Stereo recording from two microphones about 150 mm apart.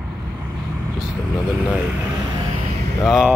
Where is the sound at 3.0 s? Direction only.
Centre (ahead or behind).